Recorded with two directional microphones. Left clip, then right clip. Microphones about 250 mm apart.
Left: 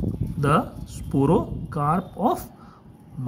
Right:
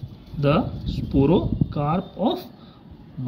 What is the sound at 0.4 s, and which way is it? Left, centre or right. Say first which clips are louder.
Speech: even; left.